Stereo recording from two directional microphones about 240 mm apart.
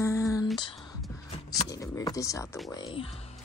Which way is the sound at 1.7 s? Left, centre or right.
Centre.